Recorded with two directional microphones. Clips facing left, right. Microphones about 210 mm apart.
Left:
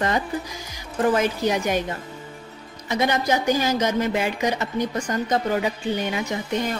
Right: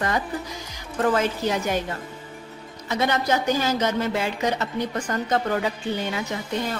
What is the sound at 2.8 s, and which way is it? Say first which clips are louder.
Speech: left 1 dB; 15° left (ahead or behind).